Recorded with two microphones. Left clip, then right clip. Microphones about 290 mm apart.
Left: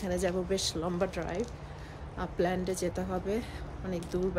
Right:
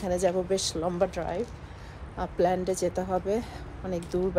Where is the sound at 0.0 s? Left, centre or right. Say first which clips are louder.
Right 5 dB; centre.